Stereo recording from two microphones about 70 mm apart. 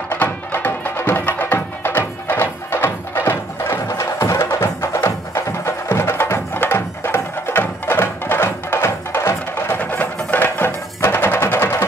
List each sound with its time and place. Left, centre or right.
0.1 s music: left